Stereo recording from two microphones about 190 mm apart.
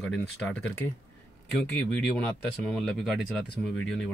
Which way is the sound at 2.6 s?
Centre (ahead or behind).